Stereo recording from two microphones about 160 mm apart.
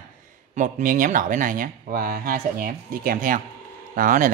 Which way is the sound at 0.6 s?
55° right (ahead or behind).